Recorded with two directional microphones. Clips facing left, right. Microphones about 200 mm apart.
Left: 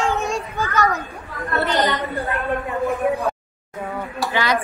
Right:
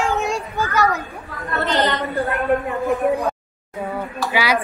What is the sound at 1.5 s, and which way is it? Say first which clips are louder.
Speech: even; 15° left (ahead or behind).